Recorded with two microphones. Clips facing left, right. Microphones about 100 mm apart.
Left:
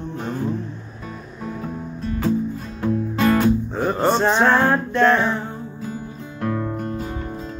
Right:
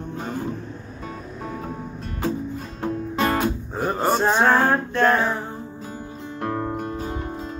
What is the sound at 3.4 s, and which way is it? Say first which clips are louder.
Music: left 5 dB; 5° right (ahead or behind).